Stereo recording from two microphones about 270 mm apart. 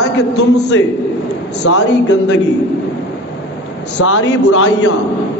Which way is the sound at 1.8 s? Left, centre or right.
Left.